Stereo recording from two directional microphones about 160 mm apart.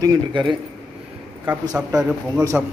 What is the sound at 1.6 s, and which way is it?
Speech, 20° right (ahead or behind).